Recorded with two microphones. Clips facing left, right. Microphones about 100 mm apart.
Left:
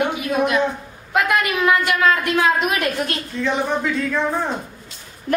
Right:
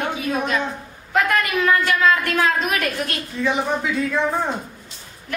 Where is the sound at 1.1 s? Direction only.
15° left (ahead or behind).